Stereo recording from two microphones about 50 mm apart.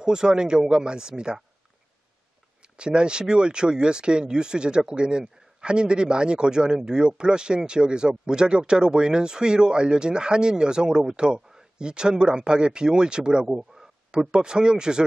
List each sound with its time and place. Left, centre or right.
0.0 s speech: centre
2.6 s speech: centre